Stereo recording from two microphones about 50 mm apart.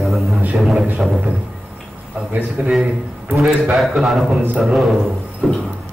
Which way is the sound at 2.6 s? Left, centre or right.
Right.